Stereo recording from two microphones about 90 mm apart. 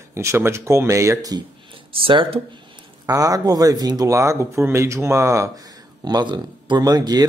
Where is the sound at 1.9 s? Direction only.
80° right.